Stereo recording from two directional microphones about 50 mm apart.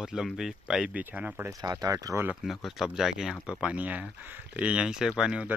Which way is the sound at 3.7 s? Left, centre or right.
Right.